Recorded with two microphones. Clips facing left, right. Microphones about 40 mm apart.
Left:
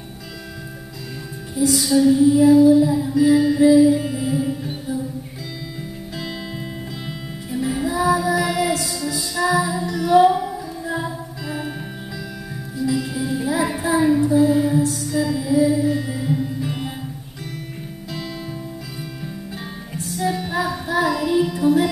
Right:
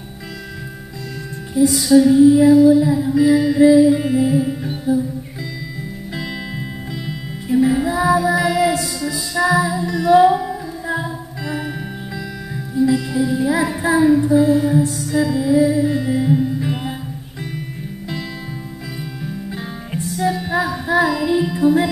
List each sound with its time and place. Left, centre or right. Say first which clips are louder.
1.7 s music: right 3 dB; centre
3.9 s music: right 5 dB; centre
4.3 s music: right 4 dB; centre
7.4 s music: right 7 dB; right
9.5 s music: right 2 dB; right
12.8 s music: right 7 dB; right
13.1 s child singing: right 5 dB; centre
14.2 s music: right 2 dB; centre
14.5 s child singing: right 2 dB; centre
14.9 s music: right 3 dB; centre
20.1 s female singing: right 3 dB; centre
21.3 s music: right 1 dB; centre